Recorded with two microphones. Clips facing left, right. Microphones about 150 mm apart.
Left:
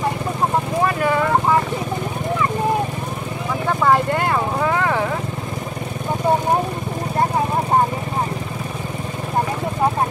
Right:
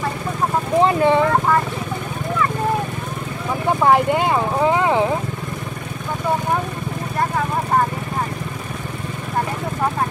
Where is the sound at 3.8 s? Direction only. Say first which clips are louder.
Right 2 dB; 15° right (ahead or behind).